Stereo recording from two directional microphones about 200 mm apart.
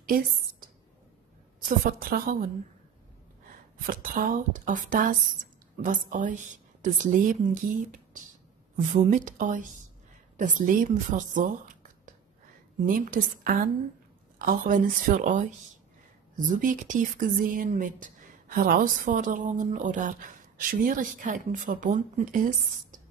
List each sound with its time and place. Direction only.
0.0 s a woman's voice: 45° right (ahead or behind)
1.8 s speech: 45° right (ahead or behind)
3.8 s speech: 45° right (ahead or behind)